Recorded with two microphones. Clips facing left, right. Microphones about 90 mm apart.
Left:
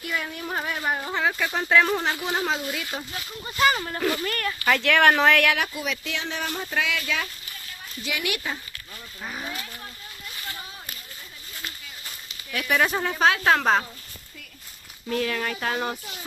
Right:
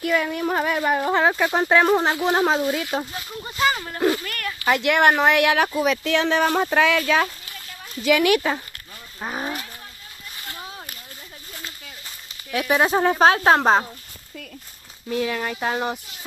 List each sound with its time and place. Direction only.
0.0 s speech: 90° right
1.2 s speech: 35° right (ahead or behind)
2.2 s speech: 35° right (ahead or behind)
3.7 s speech: 5° left (ahead or behind)
4.6 s speech: 15° right (ahead or behind)
5.6 s speech: 35° right (ahead or behind)
6.0 s speech: 70° right (ahead or behind)
6.5 s speech: 55° right (ahead or behind)
8.0 s speech: 65° right (ahead or behind)
9.2 s speech: 45° right (ahead or behind)
12.5 s speech: 25° right (ahead or behind)
13.0 s speech: 35° right (ahead or behind)
15.0 s speech: 10° right (ahead or behind)